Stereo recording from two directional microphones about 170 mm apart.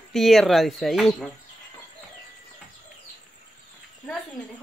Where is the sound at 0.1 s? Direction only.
Centre (ahead or behind).